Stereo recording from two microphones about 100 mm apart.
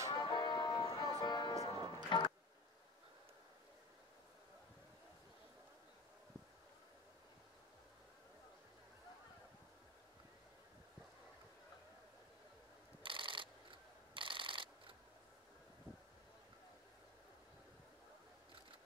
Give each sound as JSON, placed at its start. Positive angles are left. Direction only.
{"t": 0.1, "sound": "music", "side_deg": 45}
{"t": 1.5, "sound": "music", "side_deg": -45}
{"t": 2.0, "sound": "music", "side_deg": 55}
{"t": 13.0, "sound": "a sound", "side_deg": -55}